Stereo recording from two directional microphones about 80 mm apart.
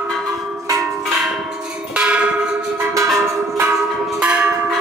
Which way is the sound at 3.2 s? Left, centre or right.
Right.